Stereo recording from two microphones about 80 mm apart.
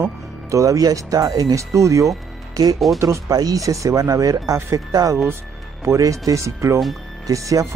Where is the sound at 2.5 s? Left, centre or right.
Right.